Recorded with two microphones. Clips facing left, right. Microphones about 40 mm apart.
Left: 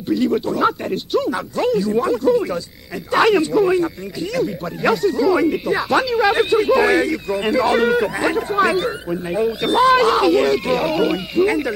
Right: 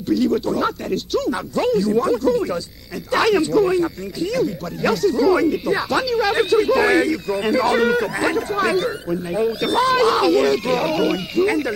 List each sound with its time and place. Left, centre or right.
0.1 s speech: centre
1.3 s speech: centre